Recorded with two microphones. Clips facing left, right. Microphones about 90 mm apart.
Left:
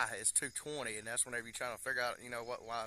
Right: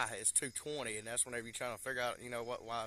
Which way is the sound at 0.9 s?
15° left (ahead or behind).